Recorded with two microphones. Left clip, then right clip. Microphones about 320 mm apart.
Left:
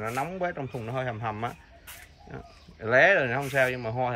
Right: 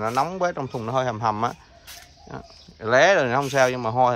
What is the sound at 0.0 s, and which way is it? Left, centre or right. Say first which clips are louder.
Speech: right 7 dB; centre.